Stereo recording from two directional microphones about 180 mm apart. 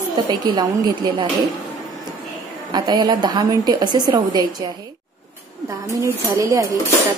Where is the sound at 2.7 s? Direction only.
25° right (ahead or behind).